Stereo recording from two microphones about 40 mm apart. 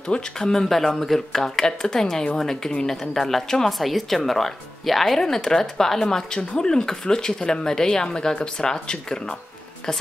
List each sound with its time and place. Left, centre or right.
0.4 s speech: centre